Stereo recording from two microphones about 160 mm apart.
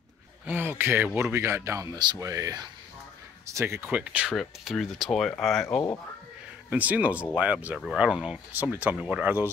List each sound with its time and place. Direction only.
0.5 s speech: 15° right (ahead or behind); by 5.8 s 5° left (ahead or behind)
6.7 s speech: 10° right (ahead or behind)